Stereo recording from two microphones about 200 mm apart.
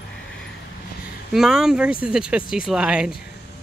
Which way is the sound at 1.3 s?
Centre (ahead or behind).